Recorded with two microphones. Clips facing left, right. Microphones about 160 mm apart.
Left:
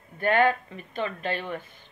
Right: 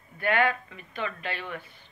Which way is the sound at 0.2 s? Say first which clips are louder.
Left 3 dB; 40° left (ahead or behind).